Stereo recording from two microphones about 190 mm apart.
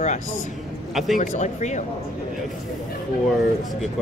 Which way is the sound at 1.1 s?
40° left (ahead or behind).